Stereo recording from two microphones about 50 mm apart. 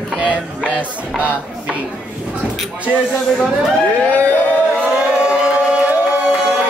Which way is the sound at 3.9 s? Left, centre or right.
Left.